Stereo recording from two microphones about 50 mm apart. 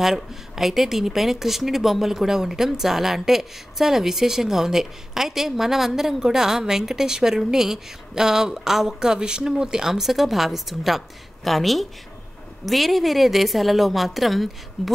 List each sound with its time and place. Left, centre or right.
0.0 s a woman's voice: centre